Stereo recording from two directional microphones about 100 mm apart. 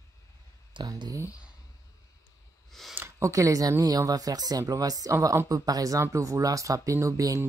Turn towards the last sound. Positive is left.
turn(degrees=-35)  # may be behind; listen again after turning